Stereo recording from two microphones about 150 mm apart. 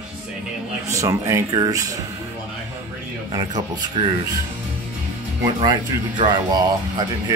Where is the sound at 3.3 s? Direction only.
25° right (ahead or behind).